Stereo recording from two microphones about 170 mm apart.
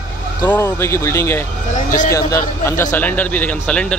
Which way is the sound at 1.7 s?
50° left (ahead or behind).